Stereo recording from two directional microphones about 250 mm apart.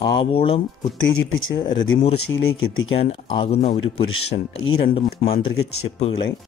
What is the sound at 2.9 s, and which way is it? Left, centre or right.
Speech, left.